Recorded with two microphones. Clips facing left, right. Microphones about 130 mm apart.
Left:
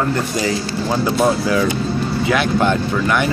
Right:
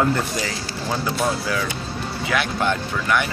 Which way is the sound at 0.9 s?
25° left (ahead or behind).